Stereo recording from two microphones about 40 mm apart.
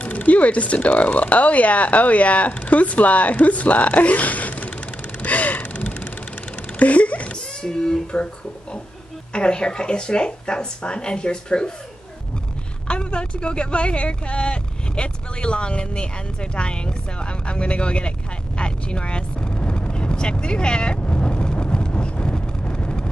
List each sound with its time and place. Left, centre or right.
0.0 s speech: left
5.2 s gasp: left
6.8 s a sound: left
7.6 s speech: centre
9.3 s speech: left
12.8 s speech: left
18.6 s vehicle: left